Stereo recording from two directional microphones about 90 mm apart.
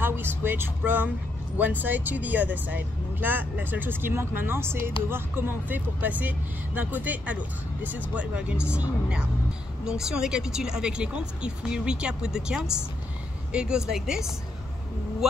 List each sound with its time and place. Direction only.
0.0 s speech: 20° right (ahead or behind)
9.8 s speech: 5° right (ahead or behind)